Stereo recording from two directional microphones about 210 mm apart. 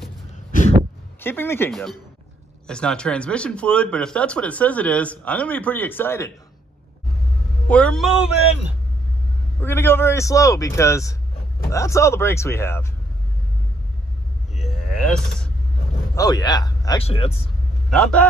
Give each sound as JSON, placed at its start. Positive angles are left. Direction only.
{"t": 1.2, "sound": "a man's voice", "side_deg": 10}
{"t": 7.6, "sound": "speech", "side_deg": 5}
{"t": 9.6, "sound": "a man's voice", "side_deg": 10}
{"t": 14.5, "sound": "cattle", "side_deg": 0}
{"t": 16.2, "sound": "speech", "side_deg": 20}
{"t": 17.8, "sound": "speech", "side_deg": 0}